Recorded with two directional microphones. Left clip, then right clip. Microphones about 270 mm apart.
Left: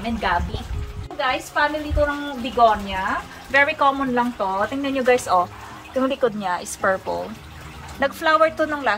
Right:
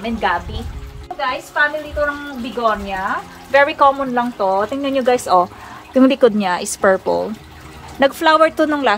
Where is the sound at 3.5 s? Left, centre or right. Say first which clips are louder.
Right 5 dB; right.